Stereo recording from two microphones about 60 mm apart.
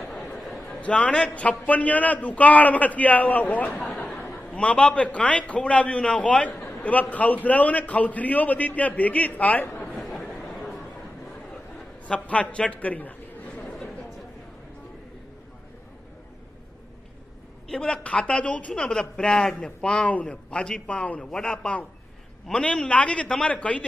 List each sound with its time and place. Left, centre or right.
0.7 s a man's voice: left
4.5 s a man's voice: left
9.9 s a sound: centre
12.1 s a man's voice: left
17.6 s a man's voice: centre